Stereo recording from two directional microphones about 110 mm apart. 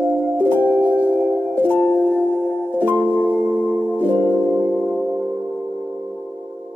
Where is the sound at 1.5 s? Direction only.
15° left (ahead or behind).